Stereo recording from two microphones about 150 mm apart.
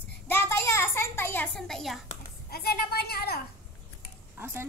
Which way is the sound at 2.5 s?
90° left.